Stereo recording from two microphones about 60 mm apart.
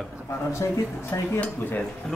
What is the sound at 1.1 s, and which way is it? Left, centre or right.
Speech, left.